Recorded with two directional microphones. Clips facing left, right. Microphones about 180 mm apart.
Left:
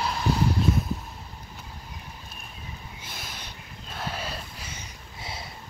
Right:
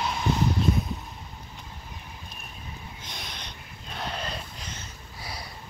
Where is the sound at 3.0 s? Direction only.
5° left (ahead or behind).